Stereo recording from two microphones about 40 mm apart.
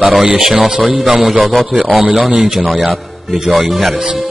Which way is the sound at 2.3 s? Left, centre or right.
Right.